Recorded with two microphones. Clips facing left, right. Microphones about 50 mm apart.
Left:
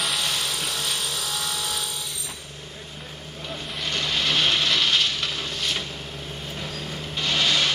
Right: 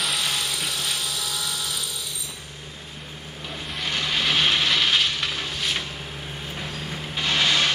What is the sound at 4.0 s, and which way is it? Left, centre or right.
Vehicle, centre.